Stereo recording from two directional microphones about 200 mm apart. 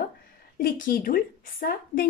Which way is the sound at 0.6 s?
45° left (ahead or behind).